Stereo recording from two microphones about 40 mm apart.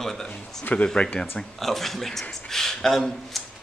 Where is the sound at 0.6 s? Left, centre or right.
Left.